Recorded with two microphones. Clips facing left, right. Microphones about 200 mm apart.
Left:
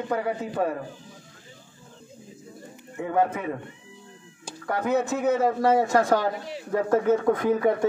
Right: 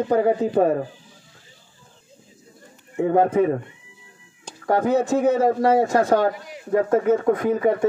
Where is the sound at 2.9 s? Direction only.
35° right (ahead or behind).